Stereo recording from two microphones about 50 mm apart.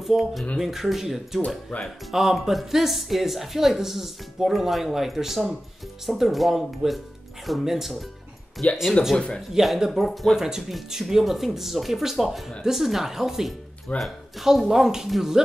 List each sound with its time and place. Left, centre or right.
0.0 s a woman's voice: centre
8.6 s a woman's voice: centre
9.1 s speech: centre
9.5 s a woman's voice: centre
13.9 s speech: left
14.4 s speech: centre